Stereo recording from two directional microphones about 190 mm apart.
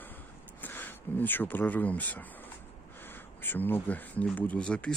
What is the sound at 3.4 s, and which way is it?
Speech, 10° left (ahead or behind).